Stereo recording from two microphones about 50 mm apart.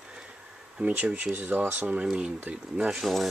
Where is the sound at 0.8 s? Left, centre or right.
Right.